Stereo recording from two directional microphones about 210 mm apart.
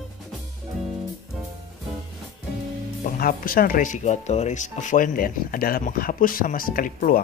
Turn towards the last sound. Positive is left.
turn(degrees=40)  # may be behind; listen again after turning